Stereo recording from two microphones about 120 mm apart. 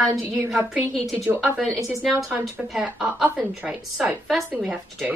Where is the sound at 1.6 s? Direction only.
Centre (ahead or behind).